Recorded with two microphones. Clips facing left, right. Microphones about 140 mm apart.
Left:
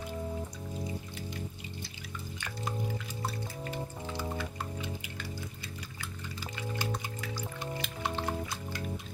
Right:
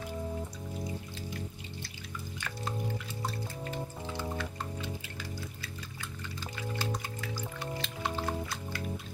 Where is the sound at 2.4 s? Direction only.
10° left (ahead or behind).